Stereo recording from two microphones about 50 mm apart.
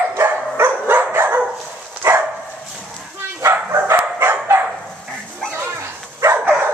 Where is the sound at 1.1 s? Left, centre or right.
Right.